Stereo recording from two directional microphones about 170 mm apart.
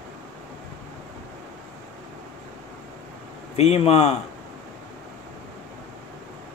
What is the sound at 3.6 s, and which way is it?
Speech, 35° left (ahead or behind).